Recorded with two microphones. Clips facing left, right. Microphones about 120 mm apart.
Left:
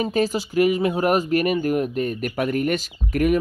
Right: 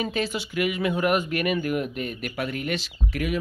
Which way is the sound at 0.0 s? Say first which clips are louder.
Left 6 dB; 40° left (ahead or behind).